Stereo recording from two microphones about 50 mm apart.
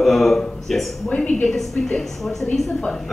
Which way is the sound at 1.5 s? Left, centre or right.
Centre.